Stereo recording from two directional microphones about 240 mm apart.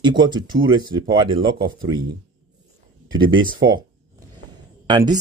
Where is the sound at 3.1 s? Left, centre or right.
Centre.